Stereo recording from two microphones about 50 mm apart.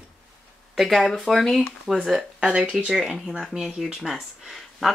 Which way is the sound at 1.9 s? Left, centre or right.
Centre.